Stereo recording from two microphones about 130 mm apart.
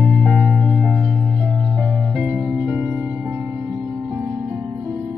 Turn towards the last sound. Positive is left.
turn(degrees=-20)  # may be behind; listen again after turning